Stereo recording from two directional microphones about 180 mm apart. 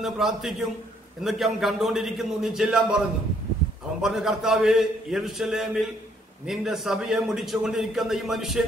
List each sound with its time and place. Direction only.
0.0 s a man's voice: centre (ahead or behind)
4.0 s a man's voice: centre (ahead or behind)